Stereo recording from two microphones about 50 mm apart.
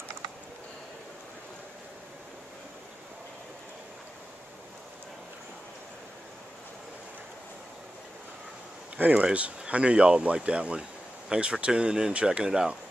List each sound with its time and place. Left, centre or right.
8.9 s speech: right